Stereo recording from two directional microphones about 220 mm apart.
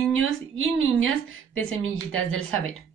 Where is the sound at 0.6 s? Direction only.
65° right (ahead or behind).